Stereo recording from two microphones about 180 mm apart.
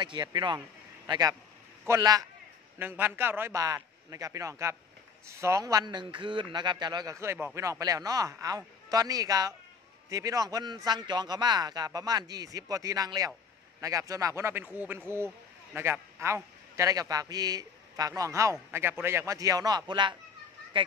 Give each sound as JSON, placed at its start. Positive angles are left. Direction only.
{"t": 0.0, "sound": "a man's voice", "side_deg": -25}